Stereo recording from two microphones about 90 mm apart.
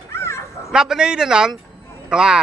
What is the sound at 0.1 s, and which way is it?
Bow-wow, 30° left (ahead or behind).